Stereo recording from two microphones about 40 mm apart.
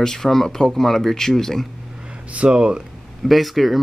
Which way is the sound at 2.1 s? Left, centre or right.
Right.